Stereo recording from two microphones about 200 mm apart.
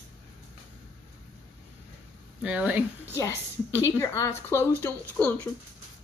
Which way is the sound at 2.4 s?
5° right (ahead or behind).